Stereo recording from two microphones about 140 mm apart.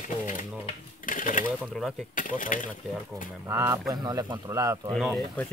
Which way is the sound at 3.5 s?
20° right (ahead or behind).